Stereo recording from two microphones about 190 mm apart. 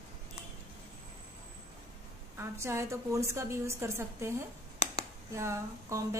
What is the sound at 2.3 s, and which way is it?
A woman's voice, 15° right (ahead or behind).